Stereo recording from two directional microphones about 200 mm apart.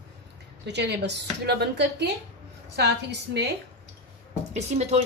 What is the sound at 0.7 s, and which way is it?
Speech, 60° right (ahead or behind).